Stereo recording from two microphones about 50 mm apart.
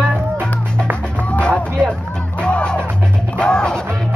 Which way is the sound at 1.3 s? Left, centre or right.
Left.